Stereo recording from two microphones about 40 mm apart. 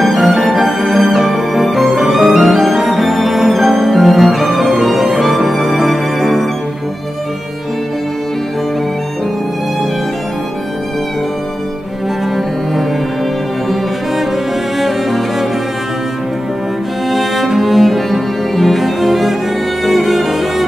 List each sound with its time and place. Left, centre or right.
0.0 s music: centre
14.8 s cello: centre
17.1 s cello: centre
19.8 s music: centre